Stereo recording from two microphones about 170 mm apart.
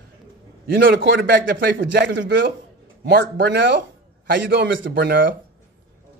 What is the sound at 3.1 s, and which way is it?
A man's voice, 75° right (ahead or behind).